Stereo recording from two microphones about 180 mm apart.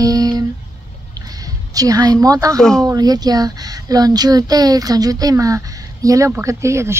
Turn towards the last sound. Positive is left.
turn(degrees=-15)  # may be behind; listen again after turning